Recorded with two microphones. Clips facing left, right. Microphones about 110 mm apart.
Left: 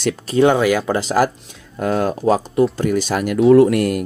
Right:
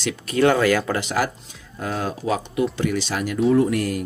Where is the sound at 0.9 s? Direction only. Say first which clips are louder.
Left 6 dB; 40° left (ahead or behind).